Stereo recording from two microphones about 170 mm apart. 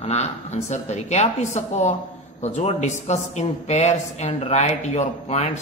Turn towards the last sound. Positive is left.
turn(degrees=40)  # may be behind; listen again after turning